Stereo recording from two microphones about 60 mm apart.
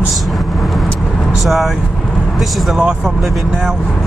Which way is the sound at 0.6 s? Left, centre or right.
Centre.